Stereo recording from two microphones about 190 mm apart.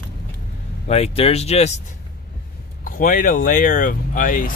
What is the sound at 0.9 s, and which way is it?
Speech, 30° left (ahead or behind).